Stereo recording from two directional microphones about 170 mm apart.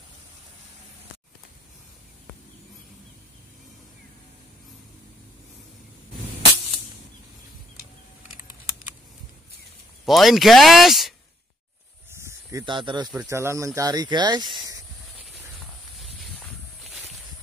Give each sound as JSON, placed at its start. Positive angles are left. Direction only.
{"t": 10.0, "sound": "speech", "side_deg": 0}
{"t": 12.1, "sound": "snake", "side_deg": -15}
{"t": 13.1, "sound": "speech", "side_deg": -10}
{"t": 16.8, "sound": "a sound", "side_deg": 0}